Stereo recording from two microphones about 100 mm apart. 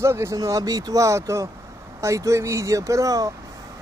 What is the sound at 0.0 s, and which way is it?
Speech, 25° right (ahead or behind).